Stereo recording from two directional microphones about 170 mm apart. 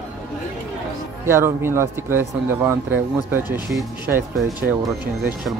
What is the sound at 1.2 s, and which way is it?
Speech, 15° right (ahead or behind).